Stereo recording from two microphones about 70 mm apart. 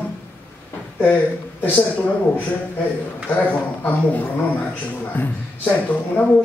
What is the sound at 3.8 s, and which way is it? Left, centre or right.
Speech, left.